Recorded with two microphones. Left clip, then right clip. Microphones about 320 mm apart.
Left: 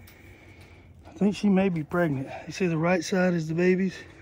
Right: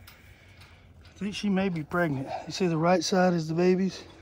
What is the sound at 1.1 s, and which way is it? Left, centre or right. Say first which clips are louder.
Speech: left 5 dB; centre.